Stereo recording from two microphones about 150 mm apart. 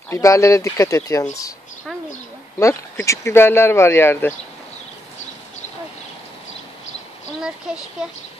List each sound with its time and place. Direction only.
0.1 s speech: 20° left (ahead or behind)
2.6 s speech: 20° left (ahead or behind)